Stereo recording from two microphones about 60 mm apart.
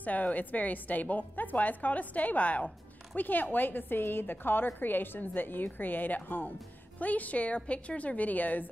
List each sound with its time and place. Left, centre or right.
0.0 s a woman's voice: left